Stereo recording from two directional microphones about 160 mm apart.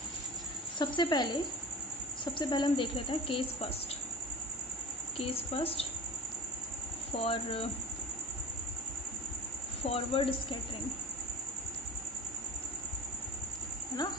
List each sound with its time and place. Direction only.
0.7 s speech: 30° left (ahead or behind)
5.2 s speech: 35° left (ahead or behind)
7.1 s speech: 35° left (ahead or behind)
9.8 s speech: 35° left (ahead or behind)